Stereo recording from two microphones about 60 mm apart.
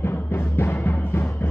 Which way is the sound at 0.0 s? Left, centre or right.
Left.